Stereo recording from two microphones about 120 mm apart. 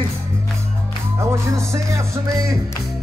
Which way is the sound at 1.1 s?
25° right (ahead or behind).